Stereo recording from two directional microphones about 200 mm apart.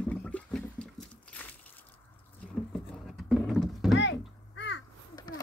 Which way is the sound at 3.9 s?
65° left (ahead or behind).